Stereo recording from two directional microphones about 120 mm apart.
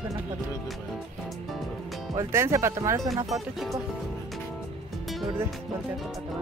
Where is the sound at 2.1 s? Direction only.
25° right (ahead or behind).